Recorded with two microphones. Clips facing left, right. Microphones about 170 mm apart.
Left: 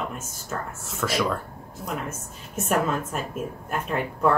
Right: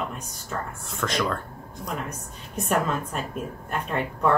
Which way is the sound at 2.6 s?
5° left (ahead or behind).